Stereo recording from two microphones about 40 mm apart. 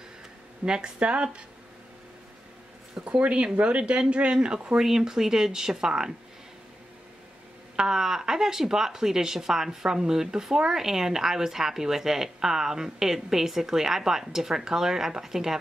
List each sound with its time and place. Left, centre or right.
0.7 s speech: right
3.0 s speech: right
4.7 s speech: centre
7.7 s speech: centre